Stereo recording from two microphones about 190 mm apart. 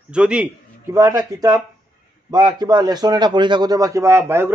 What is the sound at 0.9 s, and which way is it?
A man's voice, 15° right (ahead or behind).